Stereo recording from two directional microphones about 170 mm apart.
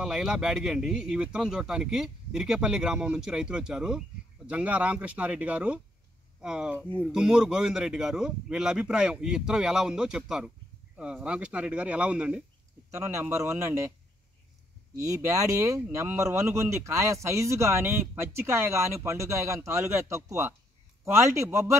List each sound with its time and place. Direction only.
0.0 s speech: 5° right (ahead or behind)
12.9 s speech: 15° right (ahead or behind)
15.0 s speech: 20° right (ahead or behind)